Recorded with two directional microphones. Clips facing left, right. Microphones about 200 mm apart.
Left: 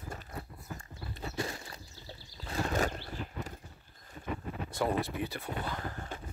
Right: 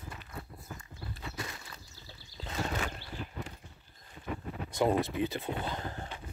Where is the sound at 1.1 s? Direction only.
30° left (ahead or behind).